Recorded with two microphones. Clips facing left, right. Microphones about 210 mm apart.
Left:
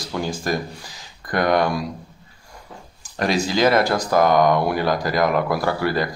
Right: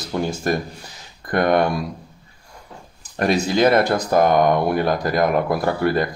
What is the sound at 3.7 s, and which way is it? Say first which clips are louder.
Speech: right 1 dB; 25° right (ahead or behind).